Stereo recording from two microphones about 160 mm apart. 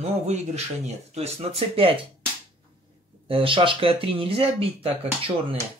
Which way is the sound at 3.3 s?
35° right (ahead or behind).